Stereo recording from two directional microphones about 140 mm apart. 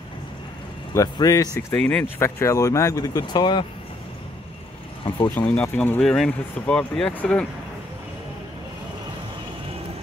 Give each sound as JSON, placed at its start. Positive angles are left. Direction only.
{"t": 0.9, "sound": "speech", "side_deg": 25}
{"t": 1.7, "sound": "speech", "side_deg": 10}
{"t": 5.3, "sound": "speech", "side_deg": 10}